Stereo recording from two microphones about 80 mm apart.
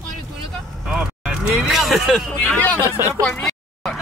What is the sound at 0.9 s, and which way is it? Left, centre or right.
Speech, centre.